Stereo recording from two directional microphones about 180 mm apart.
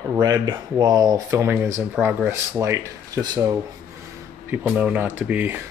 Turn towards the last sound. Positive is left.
turn(degrees=-10)  # may be behind; listen again after turning